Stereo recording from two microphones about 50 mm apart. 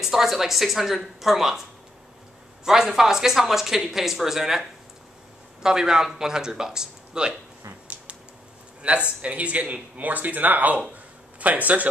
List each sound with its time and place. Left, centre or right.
0.0 s a woman's voice: centre
2.6 s speech: centre
8.8 s speech: right